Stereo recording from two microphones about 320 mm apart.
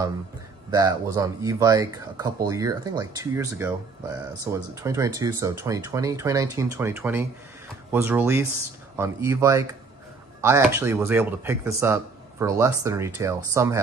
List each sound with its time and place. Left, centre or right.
0.7 s speech: centre